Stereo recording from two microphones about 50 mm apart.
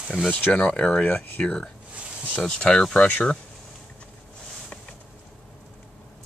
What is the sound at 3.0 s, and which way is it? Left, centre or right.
Speech, left.